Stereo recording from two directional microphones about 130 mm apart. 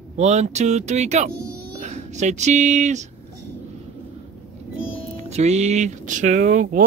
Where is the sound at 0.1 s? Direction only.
60° right (ahead or behind).